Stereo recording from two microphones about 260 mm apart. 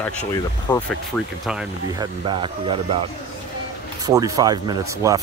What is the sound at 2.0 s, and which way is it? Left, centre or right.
Speech, centre.